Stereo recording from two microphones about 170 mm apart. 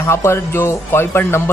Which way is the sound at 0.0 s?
15° left (ahead or behind).